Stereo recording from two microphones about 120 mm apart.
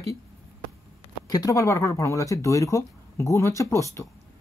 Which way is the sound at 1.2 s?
30° left (ahead or behind).